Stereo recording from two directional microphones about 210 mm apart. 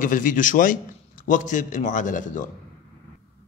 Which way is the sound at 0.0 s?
40° left (ahead or behind).